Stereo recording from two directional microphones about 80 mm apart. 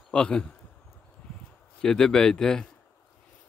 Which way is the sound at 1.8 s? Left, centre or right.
Centre.